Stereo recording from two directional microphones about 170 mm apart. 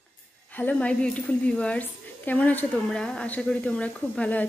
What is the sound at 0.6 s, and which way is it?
A woman's voice, 10° left (ahead or behind).